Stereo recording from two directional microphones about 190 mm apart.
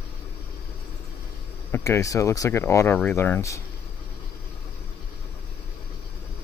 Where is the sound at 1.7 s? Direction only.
15° left (ahead or behind).